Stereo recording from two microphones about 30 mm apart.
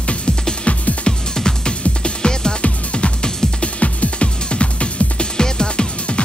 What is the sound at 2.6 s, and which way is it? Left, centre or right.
Music, left.